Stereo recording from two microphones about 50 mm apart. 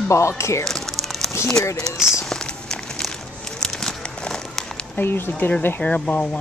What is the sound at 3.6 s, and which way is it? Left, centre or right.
Run, centre.